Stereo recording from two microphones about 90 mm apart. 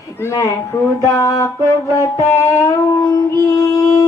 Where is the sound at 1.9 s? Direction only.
35° left (ahead or behind).